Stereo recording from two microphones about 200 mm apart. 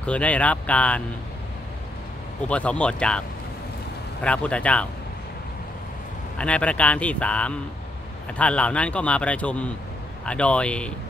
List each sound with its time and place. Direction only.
0.0 s speech: 5° left (ahead or behind)
2.4 s speech: 5° left (ahead or behind)
6.3 s speech: 5° left (ahead or behind)